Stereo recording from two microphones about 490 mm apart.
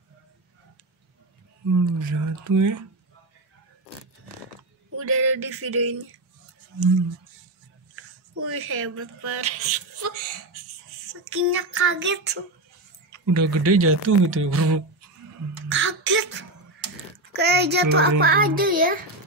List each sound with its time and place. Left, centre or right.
1.7 s speech: right
4.9 s speech: right
8.5 s speech: right
11.2 s speech: right
13.1 s speech: right
15.7 s a sound: right
17.3 s a child's voice: centre